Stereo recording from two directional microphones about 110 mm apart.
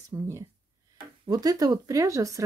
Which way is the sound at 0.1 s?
30° right (ahead or behind).